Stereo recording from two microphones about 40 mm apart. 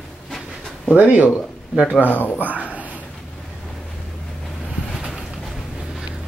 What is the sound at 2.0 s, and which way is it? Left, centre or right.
Speech, left.